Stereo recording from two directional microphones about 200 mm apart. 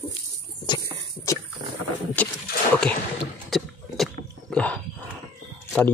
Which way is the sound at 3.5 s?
Centre (ahead or behind).